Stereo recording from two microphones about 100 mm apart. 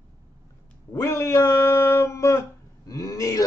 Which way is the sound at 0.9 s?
30° left (ahead or behind).